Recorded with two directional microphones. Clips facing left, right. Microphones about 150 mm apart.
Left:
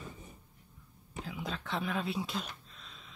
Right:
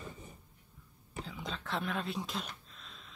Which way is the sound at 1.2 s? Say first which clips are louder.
Left 2 dB; 5° left (ahead or behind).